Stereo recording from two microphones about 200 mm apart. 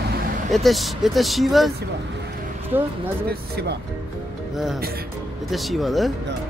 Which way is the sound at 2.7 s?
10° right (ahead or behind).